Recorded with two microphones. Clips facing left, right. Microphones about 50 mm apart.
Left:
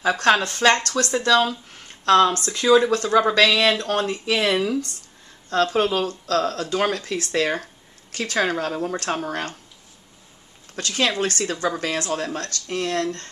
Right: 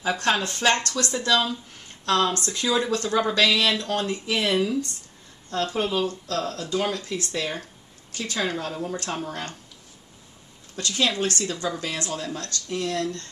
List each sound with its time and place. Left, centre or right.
0.0 s speech: left
0.6 s speech: left
3.3 s speech: left
10.8 s speech: left